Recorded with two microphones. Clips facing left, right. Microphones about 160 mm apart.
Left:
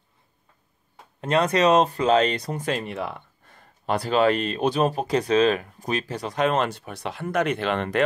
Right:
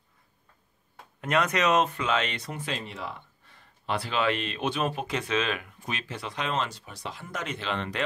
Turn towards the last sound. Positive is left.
turn(degrees=55)  # may be behind; listen again after turning